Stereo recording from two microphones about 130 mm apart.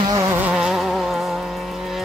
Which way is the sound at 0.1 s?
30° right (ahead or behind).